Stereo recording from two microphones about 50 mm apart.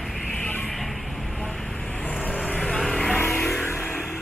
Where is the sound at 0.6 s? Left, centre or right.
Centre.